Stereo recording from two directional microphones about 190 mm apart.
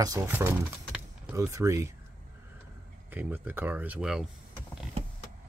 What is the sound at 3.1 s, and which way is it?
Speech, 10° right (ahead or behind).